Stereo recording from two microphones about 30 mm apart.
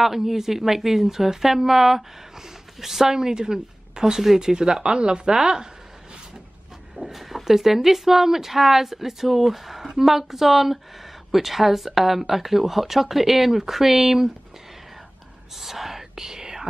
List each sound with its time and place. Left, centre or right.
0.0 s speech: centre
7.0 s speech: centre
15.5 s whispering: centre